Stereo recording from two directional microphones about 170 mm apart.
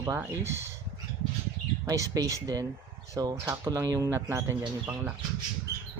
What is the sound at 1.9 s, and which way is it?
Speech, 20° right (ahead or behind).